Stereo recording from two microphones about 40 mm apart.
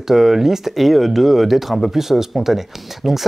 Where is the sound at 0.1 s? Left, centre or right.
Centre.